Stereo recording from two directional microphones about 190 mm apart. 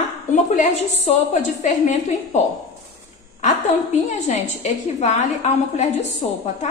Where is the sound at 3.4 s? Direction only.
40° left (ahead or behind).